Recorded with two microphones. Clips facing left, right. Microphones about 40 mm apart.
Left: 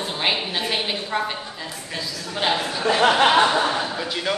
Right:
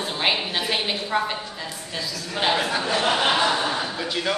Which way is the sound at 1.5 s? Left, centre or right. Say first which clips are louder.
Even; centre.